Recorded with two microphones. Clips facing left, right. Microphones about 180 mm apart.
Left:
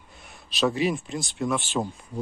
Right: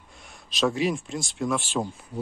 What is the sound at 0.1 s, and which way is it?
Speech, centre (ahead or behind).